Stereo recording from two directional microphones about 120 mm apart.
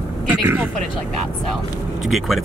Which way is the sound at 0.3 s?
15° right (ahead or behind).